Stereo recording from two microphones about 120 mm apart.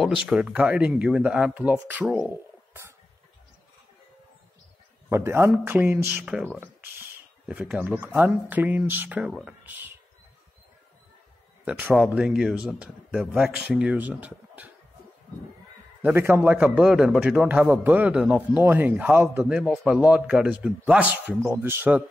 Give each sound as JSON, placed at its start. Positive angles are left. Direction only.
{"t": 0.0, "sound": "a man's voice", "side_deg": -5}
{"t": 5.1, "sound": "a man's voice", "side_deg": -20}
{"t": 6.6, "sound": "a sound", "side_deg": -20}
{"t": 7.4, "sound": "a man's voice", "side_deg": -10}
{"t": 11.6, "sound": "a man's voice", "side_deg": -10}
{"t": 16.0, "sound": "a man's voice", "side_deg": -20}